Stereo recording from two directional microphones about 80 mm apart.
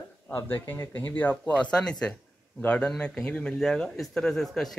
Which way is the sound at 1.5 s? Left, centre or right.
Centre.